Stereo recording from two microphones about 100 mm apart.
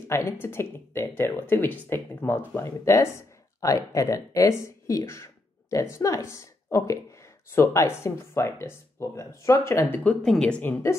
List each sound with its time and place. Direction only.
0.1 s speech: 25° left (ahead or behind)
10.2 s speech: 5° left (ahead or behind)
10.6 s speech: 25° left (ahead or behind)